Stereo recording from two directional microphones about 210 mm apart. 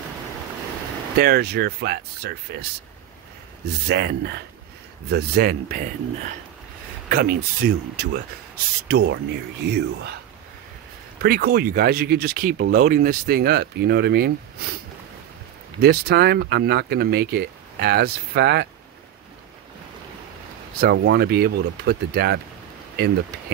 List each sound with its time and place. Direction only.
1.1 s speech: 50° right (ahead or behind)
3.8 s speech: 50° right (ahead or behind)
7.1 s speech: 50° right (ahead or behind)
11.2 s speech: 50° right (ahead or behind)
15.8 s speech: 50° right (ahead or behind)
20.8 s speech: 55° right (ahead or behind)